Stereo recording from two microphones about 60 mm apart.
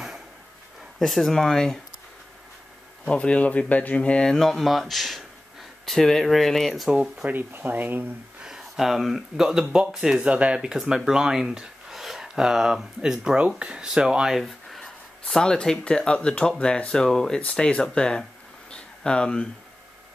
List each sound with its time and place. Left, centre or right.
0.9 s speech: centre
3.1 s speech: centre
4.3 s speech: centre
7.2 s speech: right
8.4 s speech: centre
14.4 s speech: centre
18.7 s a sound: centre